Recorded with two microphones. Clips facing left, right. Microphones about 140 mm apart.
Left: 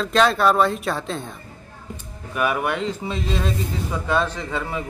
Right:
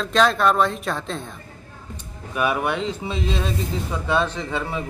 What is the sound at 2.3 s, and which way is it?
A man's voice, 10° right (ahead or behind).